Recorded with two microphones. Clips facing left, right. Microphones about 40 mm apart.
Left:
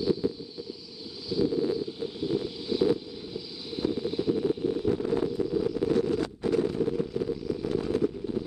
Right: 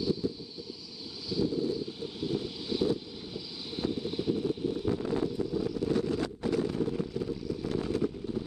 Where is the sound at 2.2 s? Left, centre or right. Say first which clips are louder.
Left 3 dB; centre.